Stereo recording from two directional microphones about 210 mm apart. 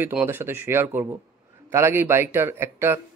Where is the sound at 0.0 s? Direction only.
10° right (ahead or behind).